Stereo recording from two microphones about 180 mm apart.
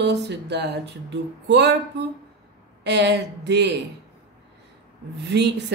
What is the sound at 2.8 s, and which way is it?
Speech, 70° right (ahead or behind).